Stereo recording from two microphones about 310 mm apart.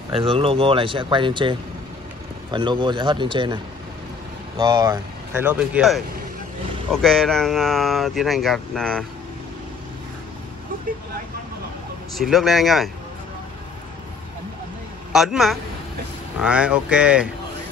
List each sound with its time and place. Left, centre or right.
0.1 s speech: centre
4.6 s speech: centre
12.2 s speech: centre
15.1 s speech: centre